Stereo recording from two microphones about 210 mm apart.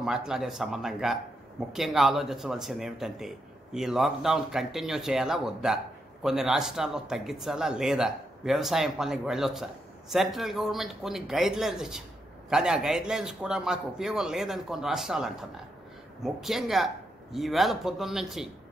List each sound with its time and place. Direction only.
0.0 s speech: centre (ahead or behind)